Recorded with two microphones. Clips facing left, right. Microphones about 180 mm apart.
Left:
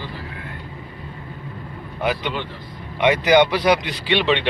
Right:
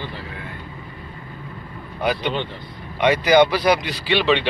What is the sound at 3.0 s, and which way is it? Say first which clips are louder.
Speech: even; 20° left (ahead or behind).